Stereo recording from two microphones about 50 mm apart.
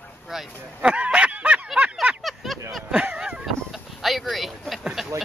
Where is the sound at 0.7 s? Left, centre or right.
Right.